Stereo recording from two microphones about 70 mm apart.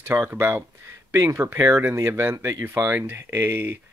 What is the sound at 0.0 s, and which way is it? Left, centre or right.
Speech, right.